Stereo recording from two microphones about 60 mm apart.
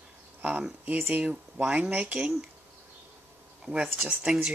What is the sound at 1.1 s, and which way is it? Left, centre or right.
Speech, right.